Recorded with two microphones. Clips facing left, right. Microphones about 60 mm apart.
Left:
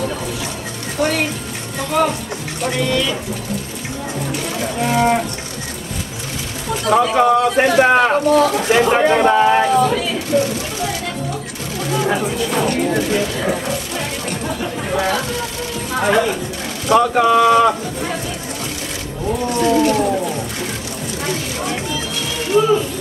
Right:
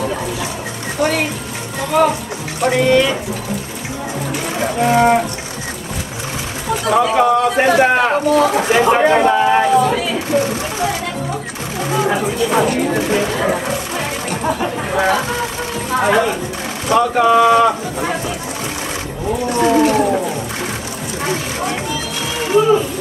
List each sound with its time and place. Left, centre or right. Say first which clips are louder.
1.0 s a sound: right 1 dB; centre
1.9 s speech: right 3 dB; centre
2.8 s speech: right 6 dB; right
4.6 s speech: right 4 dB; right
6.7 s speech: right 1 dB; centre
10.3 s vehicle: even; centre
12.1 s speech: right 2 dB; centre
13.2 s chatter: right 3 dB; right
15.9 s a woman's voice: right 2 dB; centre
19.5 s speech: right 2 dB; right
19.8 s a sound: right 2 dB; centre